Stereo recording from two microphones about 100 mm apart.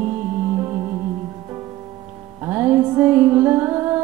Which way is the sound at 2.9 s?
20° right (ahead or behind).